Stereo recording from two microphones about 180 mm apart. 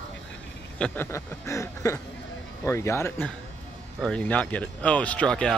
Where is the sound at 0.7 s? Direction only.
10° left (ahead or behind).